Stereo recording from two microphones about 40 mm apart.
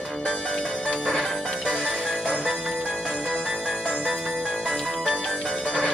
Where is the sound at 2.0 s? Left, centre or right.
Centre.